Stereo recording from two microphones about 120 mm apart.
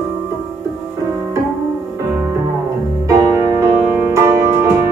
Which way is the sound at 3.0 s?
25° right (ahead or behind).